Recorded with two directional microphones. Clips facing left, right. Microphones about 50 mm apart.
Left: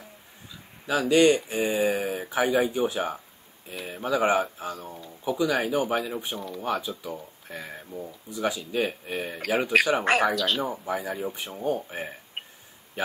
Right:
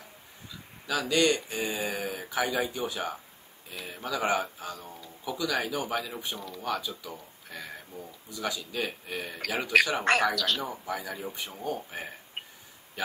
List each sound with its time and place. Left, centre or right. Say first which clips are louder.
0.8 s speech: left 6 dB; left
4.7 s speech: left 4 dB; centre
5.2 s speech: left 5 dB; left
6.6 s speech: left 3 dB; left
10.6 s speech: left 5 dB; centre
11.2 s speech: left 4 dB; centre
11.6 s speech: left 6 dB; left